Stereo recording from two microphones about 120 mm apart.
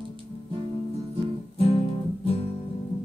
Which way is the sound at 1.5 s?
55° left (ahead or behind).